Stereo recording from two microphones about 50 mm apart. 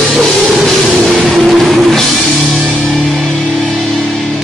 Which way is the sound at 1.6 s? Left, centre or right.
Centre.